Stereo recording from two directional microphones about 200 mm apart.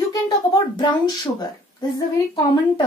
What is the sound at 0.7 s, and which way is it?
Speech, 25° left (ahead or behind).